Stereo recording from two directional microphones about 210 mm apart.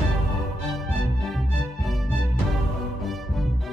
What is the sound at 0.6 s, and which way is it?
Music, centre (ahead or behind).